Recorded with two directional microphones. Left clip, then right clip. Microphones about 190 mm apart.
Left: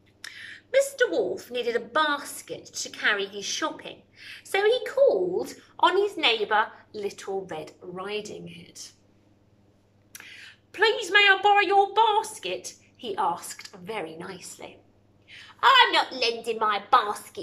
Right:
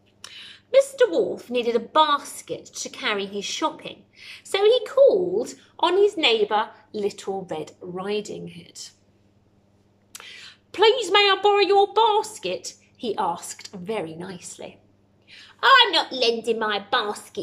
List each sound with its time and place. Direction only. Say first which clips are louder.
0.7 s a woman's voice: right 5 dB; 20° right (ahead or behind)
10.1 s a woman's voice: right 3 dB; 25° right (ahead or behind)
15.2 s a sound: right 2 dB; 25° right (ahead or behind)
16.2 s a woman's voice: right 4 dB; 20° right (ahead or behind)